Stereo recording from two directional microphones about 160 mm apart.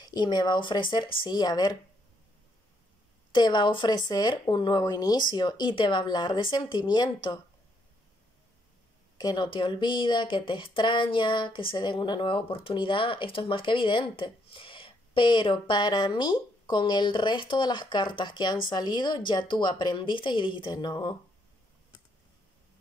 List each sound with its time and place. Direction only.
0.0 s speech: 25° left (ahead or behind)
3.3 s speech: 30° left (ahead or behind)
9.2 s speech: 25° left (ahead or behind)